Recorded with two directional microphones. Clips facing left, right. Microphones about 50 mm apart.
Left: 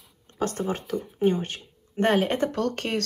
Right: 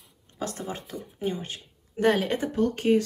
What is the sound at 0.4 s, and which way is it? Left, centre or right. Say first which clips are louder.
Speech: left 6 dB; left.